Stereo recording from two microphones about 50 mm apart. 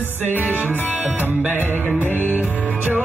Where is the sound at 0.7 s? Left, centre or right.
Left.